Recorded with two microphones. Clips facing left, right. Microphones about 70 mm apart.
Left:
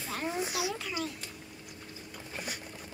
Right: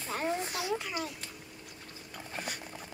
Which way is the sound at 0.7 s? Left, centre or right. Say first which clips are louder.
Even; centre.